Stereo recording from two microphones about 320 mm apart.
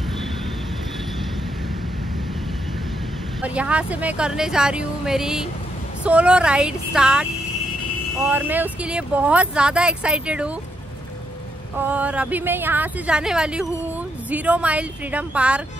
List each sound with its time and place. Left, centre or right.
3.4 s speech: centre
8.3 s speech: centre
11.8 s speech: centre